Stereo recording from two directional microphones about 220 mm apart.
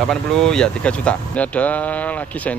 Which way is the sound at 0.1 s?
Centre (ahead or behind).